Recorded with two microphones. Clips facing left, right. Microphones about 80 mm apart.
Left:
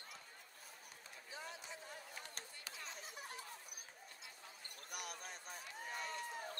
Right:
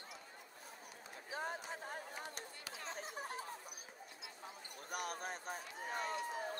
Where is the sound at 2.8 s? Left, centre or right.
Right.